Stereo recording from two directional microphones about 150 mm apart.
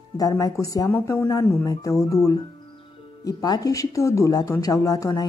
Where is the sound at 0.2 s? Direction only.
25° left (ahead or behind).